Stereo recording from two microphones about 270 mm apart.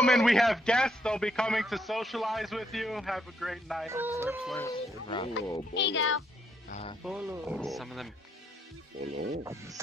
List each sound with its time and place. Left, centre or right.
0.0 s a man's voice: centre
5.0 s speech: centre
5.8 s speech: left
6.7 s speech: left
7.0 s a man's voice: centre
9.0 s speech: right
9.4 s music: centre